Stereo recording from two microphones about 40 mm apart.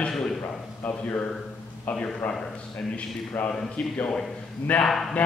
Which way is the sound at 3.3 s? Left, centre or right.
Left.